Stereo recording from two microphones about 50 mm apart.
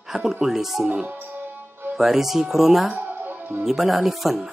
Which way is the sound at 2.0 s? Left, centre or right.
Centre.